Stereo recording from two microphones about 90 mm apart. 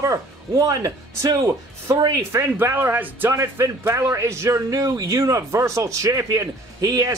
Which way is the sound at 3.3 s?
30° right (ahead or behind).